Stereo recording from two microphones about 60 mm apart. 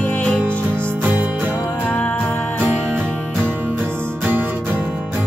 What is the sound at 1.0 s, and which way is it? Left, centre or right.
Music, right.